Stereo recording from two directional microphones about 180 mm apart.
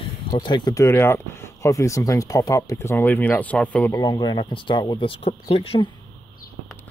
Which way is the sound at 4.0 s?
25° left (ahead or behind).